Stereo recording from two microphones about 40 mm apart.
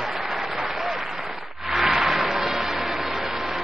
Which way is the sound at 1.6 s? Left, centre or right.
Centre.